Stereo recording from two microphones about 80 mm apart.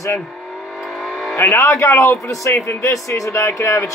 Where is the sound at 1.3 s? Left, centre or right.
Left.